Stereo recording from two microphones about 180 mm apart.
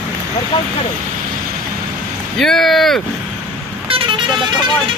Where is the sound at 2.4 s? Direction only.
Centre (ahead or behind).